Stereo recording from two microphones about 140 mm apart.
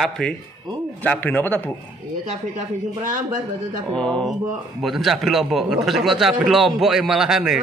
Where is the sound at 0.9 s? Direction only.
10° left (ahead or behind).